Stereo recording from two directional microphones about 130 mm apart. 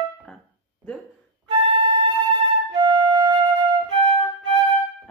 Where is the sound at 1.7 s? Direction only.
35° right (ahead or behind).